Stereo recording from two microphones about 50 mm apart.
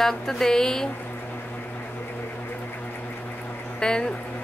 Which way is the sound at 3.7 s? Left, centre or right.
Centre.